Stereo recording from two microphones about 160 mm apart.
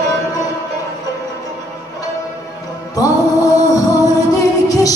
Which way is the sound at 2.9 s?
20° left (ahead or behind).